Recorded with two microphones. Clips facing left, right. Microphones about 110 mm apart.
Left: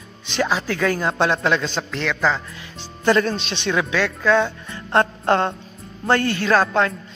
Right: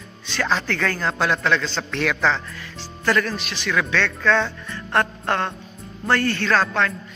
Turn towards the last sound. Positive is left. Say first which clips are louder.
# left 3 dB
turn(degrees=15)  # may be behind; listen again after turning